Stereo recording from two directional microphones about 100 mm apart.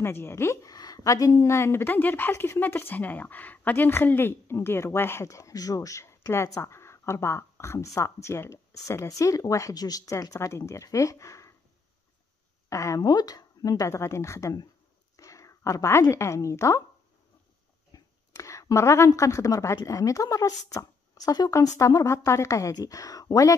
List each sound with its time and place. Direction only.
0.0 s a woman's voice: 25° left (ahead or behind)
0.7 s a woman's voice: 40° left (ahead or behind)
12.6 s speech: 30° left (ahead or behind)
17.9 s a woman's voice: 30° left (ahead or behind)